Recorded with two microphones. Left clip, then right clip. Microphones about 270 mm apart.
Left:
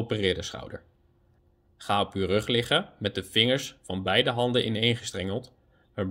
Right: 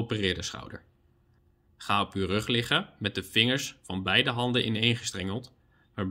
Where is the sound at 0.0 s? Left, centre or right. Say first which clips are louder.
Left 3 dB; centre.